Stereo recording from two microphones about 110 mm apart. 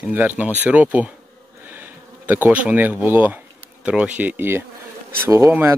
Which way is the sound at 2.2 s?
15° right (ahead or behind).